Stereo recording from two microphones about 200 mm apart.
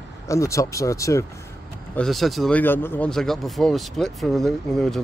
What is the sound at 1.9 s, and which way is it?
Speech, centre (ahead or behind).